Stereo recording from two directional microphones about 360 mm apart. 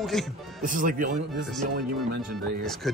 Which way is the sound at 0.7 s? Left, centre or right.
Right.